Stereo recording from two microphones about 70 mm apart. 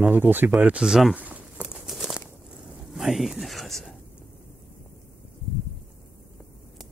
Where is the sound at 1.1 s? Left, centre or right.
Right.